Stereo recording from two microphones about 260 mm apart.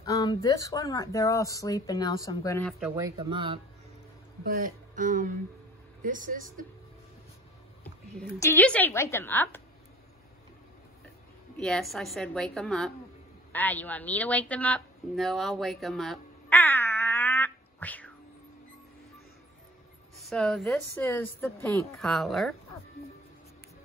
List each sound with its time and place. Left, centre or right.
0.0 s speech: centre
2.8 s speech: centre
4.9 s speech: right
7.8 s speech: centre
11.5 s a woman's voice: centre
20.2 s a woman's voice: centre